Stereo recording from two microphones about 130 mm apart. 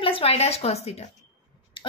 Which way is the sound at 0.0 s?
45° left (ahead or behind).